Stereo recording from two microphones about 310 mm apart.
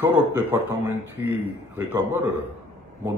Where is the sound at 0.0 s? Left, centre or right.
Centre.